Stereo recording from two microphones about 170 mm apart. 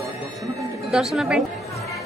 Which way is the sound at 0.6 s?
Centre (ahead or behind).